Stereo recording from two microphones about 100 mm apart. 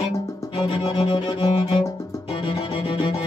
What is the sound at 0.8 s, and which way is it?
Music, 55° left (ahead or behind).